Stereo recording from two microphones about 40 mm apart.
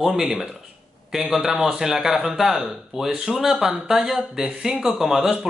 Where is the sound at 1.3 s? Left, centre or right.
Centre.